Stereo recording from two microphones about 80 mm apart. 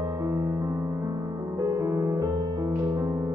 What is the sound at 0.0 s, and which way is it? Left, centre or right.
Music, right.